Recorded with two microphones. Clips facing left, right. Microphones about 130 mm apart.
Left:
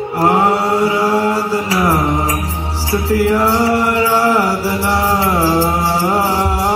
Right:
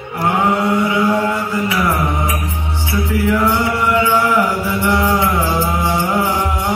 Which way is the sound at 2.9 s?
35° left (ahead or behind).